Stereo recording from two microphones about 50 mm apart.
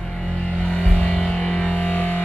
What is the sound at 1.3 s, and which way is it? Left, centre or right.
Music, centre.